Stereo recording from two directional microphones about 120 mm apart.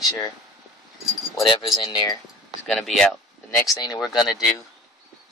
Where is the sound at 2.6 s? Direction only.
5° left (ahead or behind).